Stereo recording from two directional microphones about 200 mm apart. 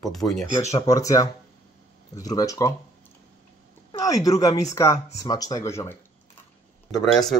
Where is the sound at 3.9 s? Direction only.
15° left (ahead or behind).